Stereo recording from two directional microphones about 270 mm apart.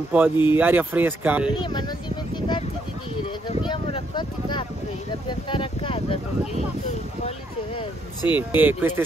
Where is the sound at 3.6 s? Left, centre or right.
Centre.